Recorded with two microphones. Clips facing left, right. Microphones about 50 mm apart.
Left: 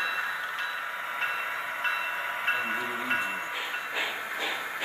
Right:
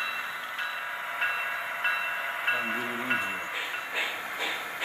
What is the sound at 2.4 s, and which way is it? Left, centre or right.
Music, centre.